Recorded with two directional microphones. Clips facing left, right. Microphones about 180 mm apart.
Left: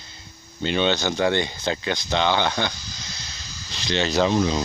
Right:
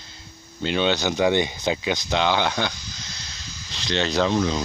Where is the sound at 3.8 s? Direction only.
5° left (ahead or behind).